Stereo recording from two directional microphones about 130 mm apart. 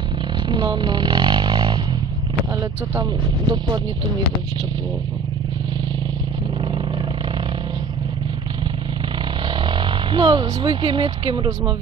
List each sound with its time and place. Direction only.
0.5 s a sound: 40° right (ahead or behind)
3.0 s speech: 30° right (ahead or behind)
9.6 s speech: 40° right (ahead or behind)